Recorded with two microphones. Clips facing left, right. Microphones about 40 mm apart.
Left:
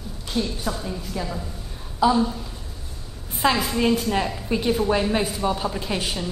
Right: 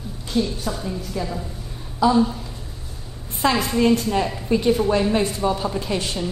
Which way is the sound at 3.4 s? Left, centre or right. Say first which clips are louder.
Right 2 dB; centre.